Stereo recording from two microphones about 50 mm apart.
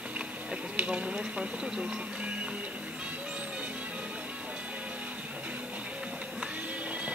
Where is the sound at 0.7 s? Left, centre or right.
Right.